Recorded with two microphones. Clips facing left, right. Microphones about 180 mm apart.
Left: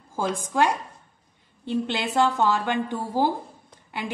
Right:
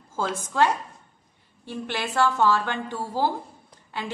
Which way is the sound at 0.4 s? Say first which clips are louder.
Right 1 dB; 15° left (ahead or behind).